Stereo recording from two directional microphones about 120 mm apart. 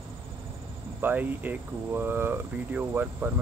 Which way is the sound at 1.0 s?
15° right (ahead or behind).